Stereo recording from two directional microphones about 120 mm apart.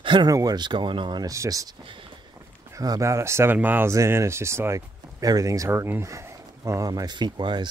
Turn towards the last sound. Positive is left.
turn(degrees=-40)  # may be behind; listen again after turning